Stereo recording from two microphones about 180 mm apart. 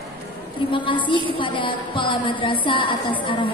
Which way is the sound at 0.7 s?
30° left (ahead or behind).